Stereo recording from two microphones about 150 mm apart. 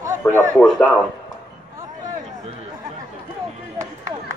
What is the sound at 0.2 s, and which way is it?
Speech, 10° left (ahead or behind).